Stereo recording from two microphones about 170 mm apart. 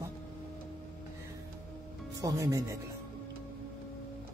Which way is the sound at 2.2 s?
20° right (ahead or behind).